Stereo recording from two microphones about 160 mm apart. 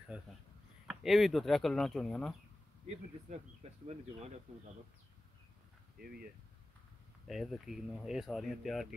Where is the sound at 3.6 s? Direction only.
40° right (ahead or behind).